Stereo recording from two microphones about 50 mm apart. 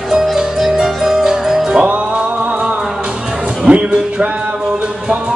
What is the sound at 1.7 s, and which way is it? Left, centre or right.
Music, right.